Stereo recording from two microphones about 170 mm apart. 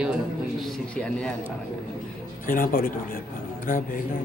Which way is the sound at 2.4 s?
55° left (ahead or behind).